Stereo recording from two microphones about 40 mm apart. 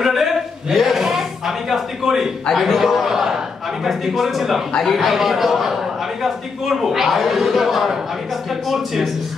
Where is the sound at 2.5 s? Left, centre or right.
Centre.